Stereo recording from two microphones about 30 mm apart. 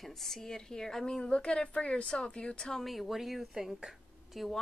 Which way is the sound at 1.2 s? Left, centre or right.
Left.